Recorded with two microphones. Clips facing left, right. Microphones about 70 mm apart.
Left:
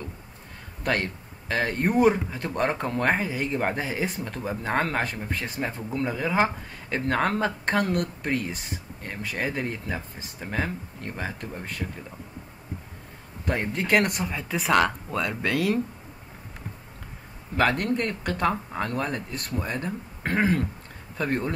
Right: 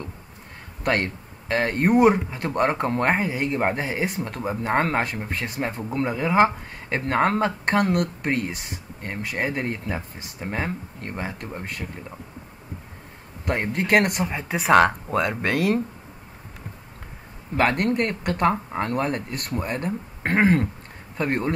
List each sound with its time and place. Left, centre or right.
0.8 s speech: right
3.3 s speech: right
4.7 s speech: right
5.0 s speech: right
5.9 s speech: right
13.5 s speech: right
14.8 s speech: right
17.6 s speech: right